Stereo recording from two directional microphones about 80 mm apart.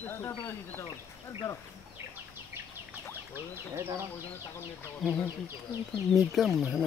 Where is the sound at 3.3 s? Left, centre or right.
Right.